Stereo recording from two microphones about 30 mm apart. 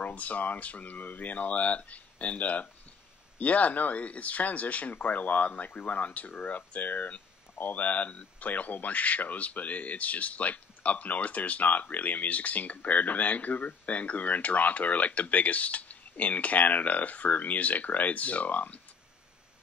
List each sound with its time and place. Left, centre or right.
0.0 s speech: left
8.5 s speech: left